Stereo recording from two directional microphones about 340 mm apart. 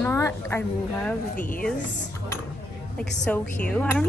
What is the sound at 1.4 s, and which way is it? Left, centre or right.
Speech, left.